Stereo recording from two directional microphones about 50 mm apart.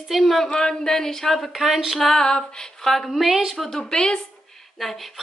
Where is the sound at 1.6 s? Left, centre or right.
Centre.